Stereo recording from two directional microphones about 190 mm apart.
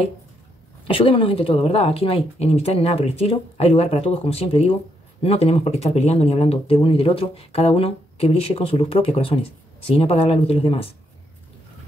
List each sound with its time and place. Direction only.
0.8 s speech: 30° left (ahead or behind)